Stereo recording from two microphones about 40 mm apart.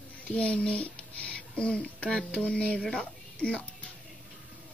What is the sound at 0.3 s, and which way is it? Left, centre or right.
A woman's voice, left.